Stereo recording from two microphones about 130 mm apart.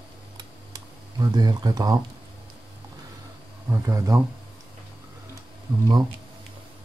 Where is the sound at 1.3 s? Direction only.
30° right (ahead or behind).